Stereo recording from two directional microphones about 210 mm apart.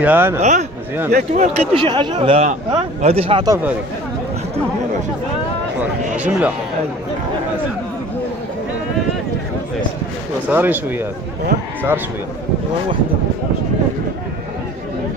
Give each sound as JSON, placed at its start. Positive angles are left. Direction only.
{"t": 0.0, "sound": "speech", "side_deg": -10}
{"t": 0.4, "sound": "speech", "side_deg": -35}
{"t": 6.1, "sound": "speech", "side_deg": -5}
{"t": 10.5, "sound": "speech", "side_deg": -10}